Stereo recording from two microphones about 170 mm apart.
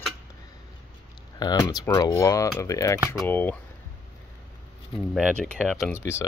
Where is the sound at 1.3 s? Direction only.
20° left (ahead or behind).